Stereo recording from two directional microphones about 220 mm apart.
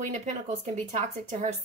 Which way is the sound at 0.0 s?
35° right (ahead or behind).